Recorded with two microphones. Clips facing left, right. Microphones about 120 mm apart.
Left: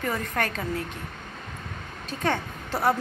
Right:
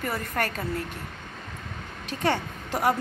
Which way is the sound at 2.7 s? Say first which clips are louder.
Even; 10° right (ahead or behind).